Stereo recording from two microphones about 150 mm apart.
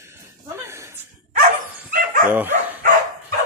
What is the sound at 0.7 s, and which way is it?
Chuckle, 20° right (ahead or behind).